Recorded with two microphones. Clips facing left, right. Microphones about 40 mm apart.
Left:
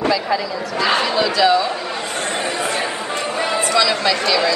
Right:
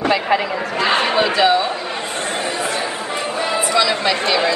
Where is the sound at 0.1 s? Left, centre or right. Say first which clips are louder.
Right 2 dB; right.